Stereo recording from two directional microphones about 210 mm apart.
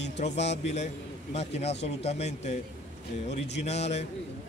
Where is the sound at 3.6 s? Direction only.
30° left (ahead or behind).